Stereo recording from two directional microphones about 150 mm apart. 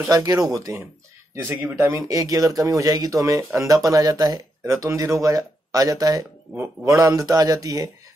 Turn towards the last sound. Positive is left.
turn(degrees=-25)  # may be behind; listen again after turning